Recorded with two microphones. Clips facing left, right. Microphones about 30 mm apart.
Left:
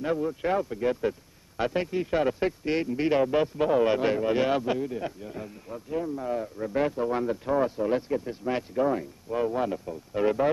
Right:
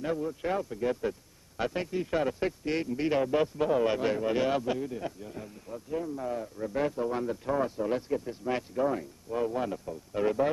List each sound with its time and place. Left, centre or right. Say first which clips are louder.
0.0 s speech: left 4 dB; centre